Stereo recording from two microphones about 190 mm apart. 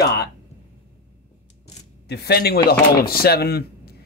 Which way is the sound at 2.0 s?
60° left (ahead or behind).